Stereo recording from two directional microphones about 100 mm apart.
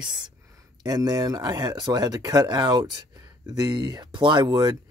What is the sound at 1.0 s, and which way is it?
Speech, 40° right (ahead or behind).